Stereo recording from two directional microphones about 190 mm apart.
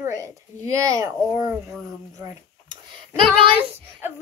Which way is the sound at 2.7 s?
25° right (ahead or behind).